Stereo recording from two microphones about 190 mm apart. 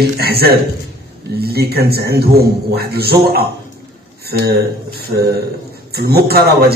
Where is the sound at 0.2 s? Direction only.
55° right (ahead or behind).